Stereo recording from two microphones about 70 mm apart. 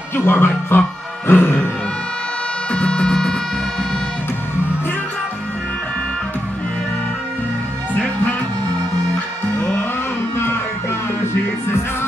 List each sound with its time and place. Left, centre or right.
0.1 s speech: left
0.7 s music: left
2.7 s music: centre